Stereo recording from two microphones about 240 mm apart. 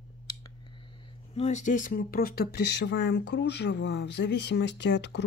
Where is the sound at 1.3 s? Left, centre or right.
Left.